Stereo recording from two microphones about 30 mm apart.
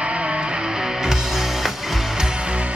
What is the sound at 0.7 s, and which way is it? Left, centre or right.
Music, centre.